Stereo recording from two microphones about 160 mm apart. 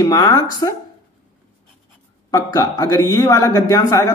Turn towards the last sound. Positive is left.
turn(degrees=20)  # may be behind; listen again after turning